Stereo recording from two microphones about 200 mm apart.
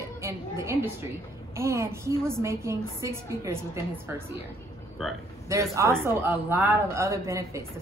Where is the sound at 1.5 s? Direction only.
15° right (ahead or behind).